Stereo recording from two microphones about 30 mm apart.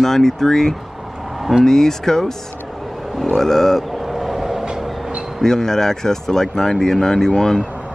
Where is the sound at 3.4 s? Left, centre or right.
Centre.